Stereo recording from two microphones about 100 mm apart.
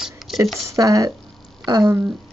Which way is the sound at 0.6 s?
35° right (ahead or behind).